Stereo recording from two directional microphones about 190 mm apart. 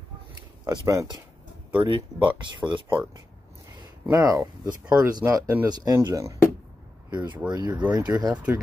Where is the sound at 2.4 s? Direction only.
25° right (ahead or behind).